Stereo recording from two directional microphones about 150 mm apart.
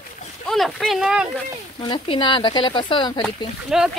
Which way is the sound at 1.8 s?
30° left (ahead or behind).